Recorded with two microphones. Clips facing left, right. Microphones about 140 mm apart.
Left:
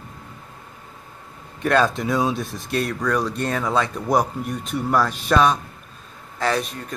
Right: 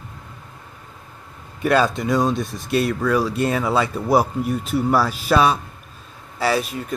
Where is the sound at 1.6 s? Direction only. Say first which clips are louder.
Right 1 dB; 5° right (ahead or behind).